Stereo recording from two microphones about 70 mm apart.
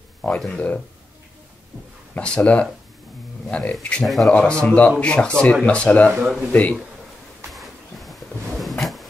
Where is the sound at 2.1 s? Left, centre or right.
Centre.